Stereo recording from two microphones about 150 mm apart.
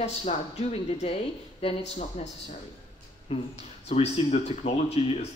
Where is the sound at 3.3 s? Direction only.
40° left (ahead or behind).